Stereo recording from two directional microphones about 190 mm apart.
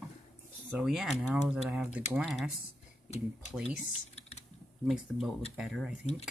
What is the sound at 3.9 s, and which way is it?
Typing, 35° left (ahead or behind).